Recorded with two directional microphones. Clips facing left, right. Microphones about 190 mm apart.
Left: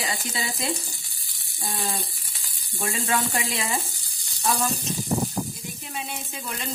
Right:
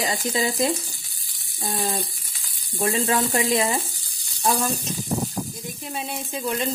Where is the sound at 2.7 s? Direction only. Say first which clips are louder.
Right 5 dB; 30° right (ahead or behind).